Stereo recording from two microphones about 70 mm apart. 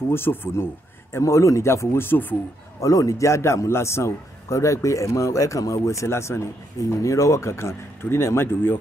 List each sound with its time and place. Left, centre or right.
0.1 s speech: left
1.1 s speech: left
2.8 s a man's voice: left